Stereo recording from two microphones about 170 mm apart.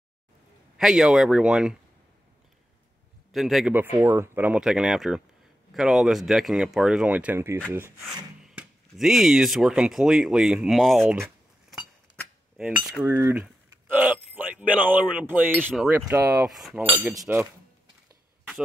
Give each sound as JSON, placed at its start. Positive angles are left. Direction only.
{"t": 0.7, "sound": "speech", "side_deg": -5}
{"t": 3.3, "sound": "speech", "side_deg": 0}
{"t": 3.7, "sound": "speech", "side_deg": -15}
{"t": 8.4, "sound": "speech", "side_deg": -5}
{"t": 12.5, "sound": "speech", "side_deg": -5}
{"t": 13.0, "sound": "speech", "side_deg": -15}
{"t": 13.8, "sound": "a sound", "side_deg": -10}
{"t": 15.7, "sound": "speech", "side_deg": -5}
{"t": 16.1, "sound": "speech", "side_deg": -15}